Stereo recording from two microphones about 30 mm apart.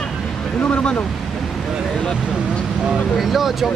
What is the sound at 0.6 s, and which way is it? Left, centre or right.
Speech, left.